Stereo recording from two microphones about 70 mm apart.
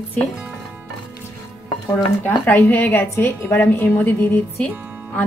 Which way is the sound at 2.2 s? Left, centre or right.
Left.